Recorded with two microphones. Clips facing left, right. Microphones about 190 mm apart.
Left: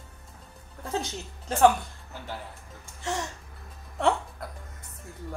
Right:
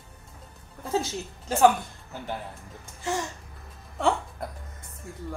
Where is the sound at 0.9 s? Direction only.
5° right (ahead or behind).